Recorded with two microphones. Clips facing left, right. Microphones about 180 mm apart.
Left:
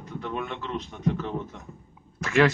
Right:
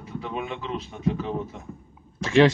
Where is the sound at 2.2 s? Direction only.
30° right (ahead or behind).